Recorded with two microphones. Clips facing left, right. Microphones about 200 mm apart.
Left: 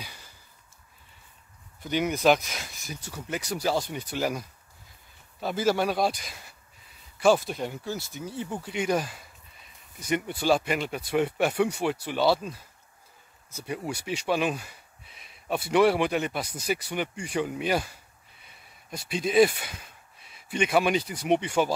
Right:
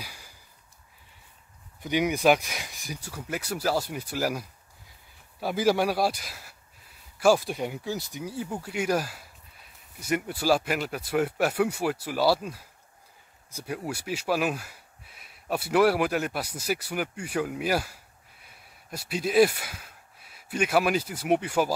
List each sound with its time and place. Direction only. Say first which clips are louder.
1.8 s speech: right 1 dB; 15° right (ahead or behind)